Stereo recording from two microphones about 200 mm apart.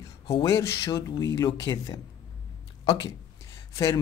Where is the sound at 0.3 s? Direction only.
20° left (ahead or behind).